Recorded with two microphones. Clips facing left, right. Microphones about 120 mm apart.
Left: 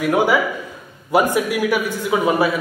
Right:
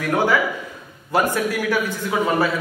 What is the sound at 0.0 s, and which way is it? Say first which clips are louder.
A man's voice: left 3 dB; 10° left (ahead or behind).